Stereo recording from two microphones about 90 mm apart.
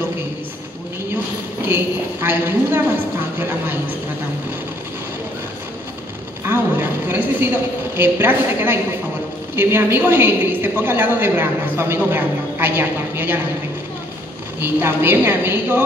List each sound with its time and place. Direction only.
1.7 s a woman's voice: 25° right (ahead or behind)
6.4 s a woman's voice: 20° right (ahead or behind)
14.6 s a woman's voice: 25° right (ahead or behind)